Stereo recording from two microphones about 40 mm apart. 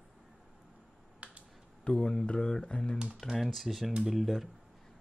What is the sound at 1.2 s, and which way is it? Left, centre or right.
Finger snapping, right.